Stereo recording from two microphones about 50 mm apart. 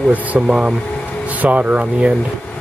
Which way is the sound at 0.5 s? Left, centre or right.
Centre.